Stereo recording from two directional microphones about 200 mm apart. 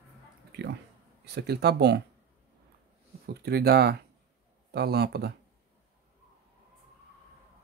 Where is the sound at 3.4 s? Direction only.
55° right (ahead or behind).